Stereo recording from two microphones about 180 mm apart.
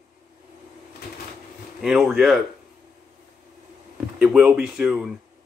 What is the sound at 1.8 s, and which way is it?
Speech, centre (ahead or behind).